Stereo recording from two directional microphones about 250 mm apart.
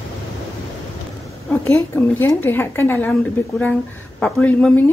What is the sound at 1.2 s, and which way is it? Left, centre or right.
Speech, centre.